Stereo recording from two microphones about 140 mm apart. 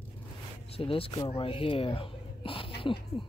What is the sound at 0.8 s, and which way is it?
Speech, 40° left (ahead or behind).